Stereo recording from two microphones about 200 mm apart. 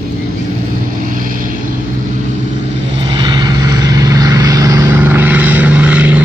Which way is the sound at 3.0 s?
25° right (ahead or behind).